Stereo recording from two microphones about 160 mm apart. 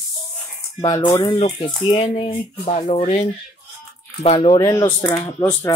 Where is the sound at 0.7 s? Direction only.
30° left (ahead or behind).